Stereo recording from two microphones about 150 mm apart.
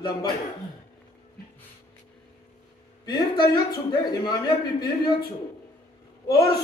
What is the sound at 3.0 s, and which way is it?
A man's voice, 30° left (ahead or behind).